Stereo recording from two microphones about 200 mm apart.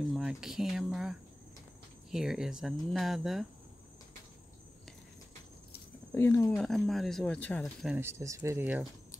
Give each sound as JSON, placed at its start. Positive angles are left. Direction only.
{"t": 0.1, "sound": "cricket", "side_deg": 0}
{"t": 2.0, "sound": "speech", "side_deg": 0}
{"t": 6.1, "sound": "speech", "side_deg": 15}
{"t": 6.6, "sound": "speech", "side_deg": 0}
{"t": 8.0, "sound": "speech", "side_deg": -15}